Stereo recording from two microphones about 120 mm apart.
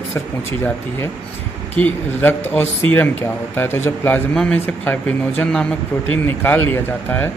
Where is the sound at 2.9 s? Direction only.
50° right (ahead or behind).